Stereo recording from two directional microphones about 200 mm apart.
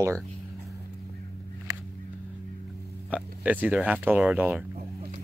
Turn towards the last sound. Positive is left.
turn(degrees=-5)  # may be behind; listen again after turning